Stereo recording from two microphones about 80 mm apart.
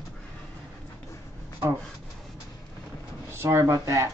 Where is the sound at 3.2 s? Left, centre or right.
Right.